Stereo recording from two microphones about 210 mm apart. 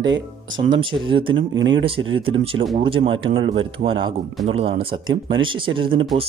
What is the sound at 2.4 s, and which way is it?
Speech, 25° right (ahead or behind).